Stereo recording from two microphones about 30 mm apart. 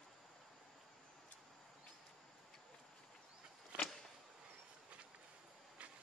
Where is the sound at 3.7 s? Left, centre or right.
Right.